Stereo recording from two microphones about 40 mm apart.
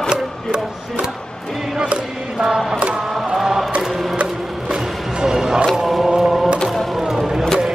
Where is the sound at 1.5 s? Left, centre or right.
Centre.